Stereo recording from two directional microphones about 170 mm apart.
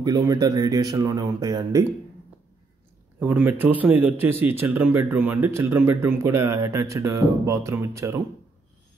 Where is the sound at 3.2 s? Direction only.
10° right (ahead or behind).